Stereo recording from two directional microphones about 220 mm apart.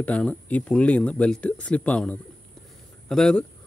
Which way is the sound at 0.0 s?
5° left (ahead or behind).